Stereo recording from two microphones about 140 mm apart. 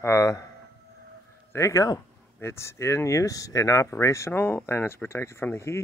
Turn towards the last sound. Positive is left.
turn(degrees=20)  # may be behind; listen again after turning